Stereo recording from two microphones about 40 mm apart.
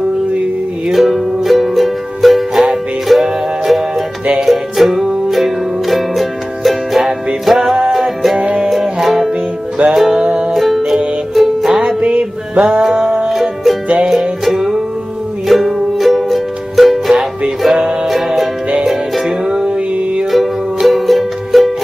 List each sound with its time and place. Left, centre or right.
0.9 s music: centre
10.2 s music: right
10.5 s music: centre
12.0 s music: right
13.3 s music: centre
13.9 s music: centre
18.0 s music: centre
19.4 s music: centre
20.2 s music: centre